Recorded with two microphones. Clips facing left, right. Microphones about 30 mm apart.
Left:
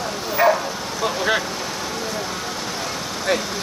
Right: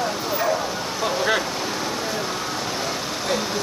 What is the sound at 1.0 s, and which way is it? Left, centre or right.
Vehicle, centre.